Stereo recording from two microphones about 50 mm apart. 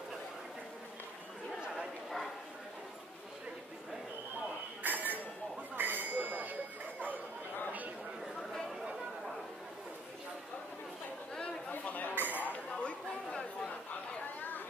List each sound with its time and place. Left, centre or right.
4.8 s chink: right
5.8 s a sound: right
8.4 s chatter: centre
11.7 s chatter: left
12.2 s a sound: right
12.4 s chink: left